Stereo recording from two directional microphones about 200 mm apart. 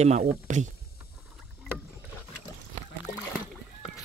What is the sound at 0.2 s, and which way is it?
Speech, 45° right (ahead or behind).